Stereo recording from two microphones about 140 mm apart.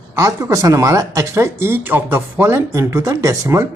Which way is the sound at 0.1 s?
20° right (ahead or behind).